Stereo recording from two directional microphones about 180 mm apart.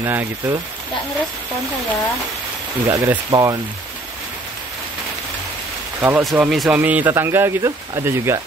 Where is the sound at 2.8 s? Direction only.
15° right (ahead or behind).